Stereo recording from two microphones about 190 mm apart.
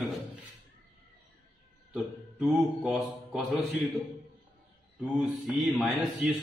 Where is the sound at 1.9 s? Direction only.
5° right (ahead or behind).